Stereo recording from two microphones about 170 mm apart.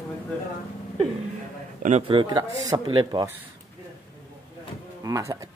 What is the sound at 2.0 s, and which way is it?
Speech, 30° right (ahead or behind).